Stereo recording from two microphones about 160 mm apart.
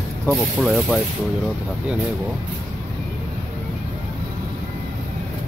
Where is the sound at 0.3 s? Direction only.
Centre (ahead or behind).